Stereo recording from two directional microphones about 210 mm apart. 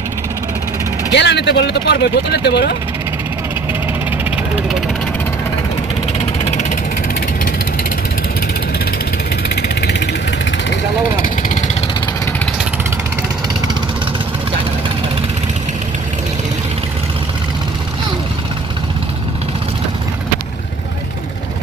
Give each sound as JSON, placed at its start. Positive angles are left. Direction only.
{"t": 1.1, "sound": "speech", "side_deg": 55}
{"t": 9.6, "sound": "vehicle", "side_deg": 50}
{"t": 11.2, "sound": "vehicle", "side_deg": 40}